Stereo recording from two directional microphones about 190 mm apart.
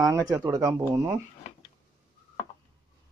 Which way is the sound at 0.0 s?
20° right (ahead or behind).